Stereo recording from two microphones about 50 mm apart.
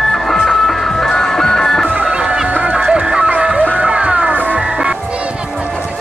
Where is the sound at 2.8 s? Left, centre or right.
Centre.